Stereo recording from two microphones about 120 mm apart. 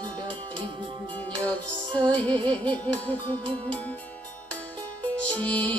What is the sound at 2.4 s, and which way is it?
Music, 10° left (ahead or behind).